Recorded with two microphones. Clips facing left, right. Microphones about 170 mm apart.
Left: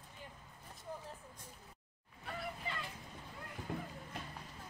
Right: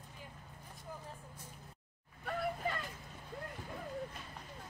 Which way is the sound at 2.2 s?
50° right (ahead or behind).